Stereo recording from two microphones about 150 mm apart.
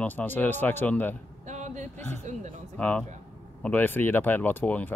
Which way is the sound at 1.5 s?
55° right (ahead or behind).